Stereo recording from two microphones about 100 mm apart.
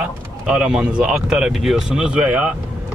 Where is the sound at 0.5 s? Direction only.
10° right (ahead or behind).